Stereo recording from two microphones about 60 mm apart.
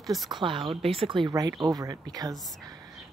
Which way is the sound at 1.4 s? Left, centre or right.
Right.